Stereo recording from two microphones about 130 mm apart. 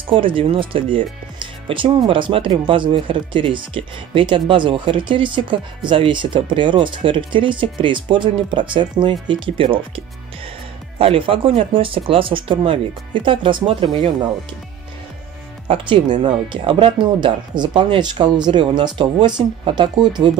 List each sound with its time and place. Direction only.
0.0 s speech: 40° right (ahead or behind)
15.7 s speech: 40° right (ahead or behind)